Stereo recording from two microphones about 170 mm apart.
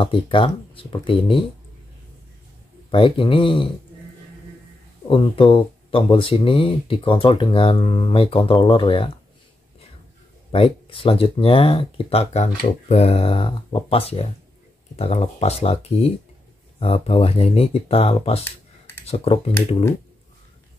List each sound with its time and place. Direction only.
0.0 s speech: 30° left (ahead or behind)
2.9 s speech: 30° left (ahead or behind)
5.1 s speech: 30° left (ahead or behind)
10.5 s speech: 30° left (ahead or behind)